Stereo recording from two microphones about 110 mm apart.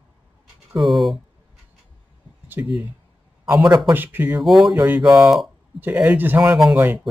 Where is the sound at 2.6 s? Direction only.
20° right (ahead or behind).